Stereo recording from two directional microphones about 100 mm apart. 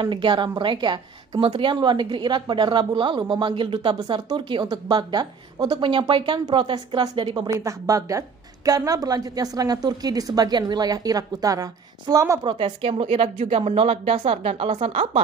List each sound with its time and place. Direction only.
0.0 s a woman's voice: 55° right (ahead or behind)
7.4 s a woman's voice: 35° right (ahead or behind)
12.4 s speech: 60° right (ahead or behind); by 15.2 s 80° right